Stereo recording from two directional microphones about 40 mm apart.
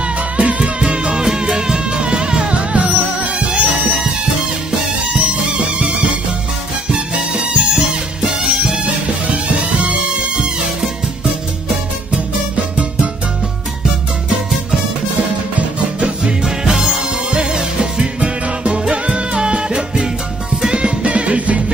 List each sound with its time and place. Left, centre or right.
0.4 s music: right
5.2 s music: right
8.2 s music: centre
9.6 s music: right
16.4 s music: centre
17.3 s music: centre